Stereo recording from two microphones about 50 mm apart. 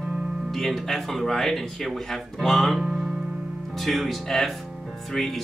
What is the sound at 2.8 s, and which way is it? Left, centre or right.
Music, centre.